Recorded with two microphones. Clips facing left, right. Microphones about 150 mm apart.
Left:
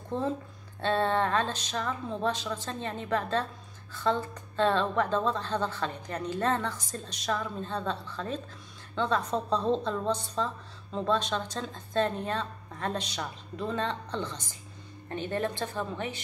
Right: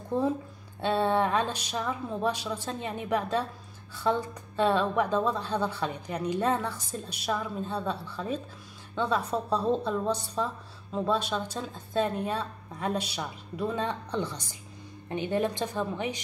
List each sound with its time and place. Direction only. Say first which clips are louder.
0.1 s a woman's voice: right 3 dB; 10° right (ahead or behind)